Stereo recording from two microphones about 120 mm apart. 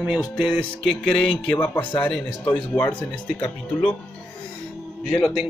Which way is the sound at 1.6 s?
15° left (ahead or behind).